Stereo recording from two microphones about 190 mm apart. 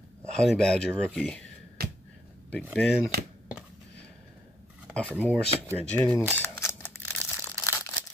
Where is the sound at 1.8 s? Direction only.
55° right (ahead or behind).